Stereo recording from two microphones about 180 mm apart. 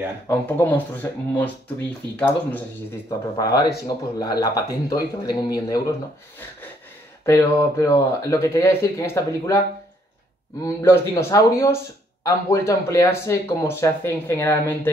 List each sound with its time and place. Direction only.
0.3 s a man's voice: 10° left (ahead or behind)
7.2 s speech: 15° left (ahead or behind)
10.6 s speech: 15° left (ahead or behind)